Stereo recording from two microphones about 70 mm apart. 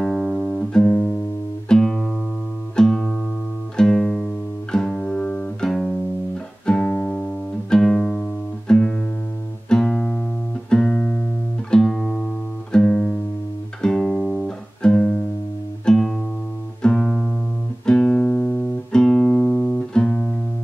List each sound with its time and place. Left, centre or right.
0.0 s music: centre
5.6 s music: centre